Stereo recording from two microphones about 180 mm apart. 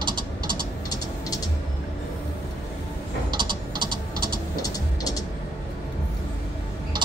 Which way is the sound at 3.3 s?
25° right (ahead or behind).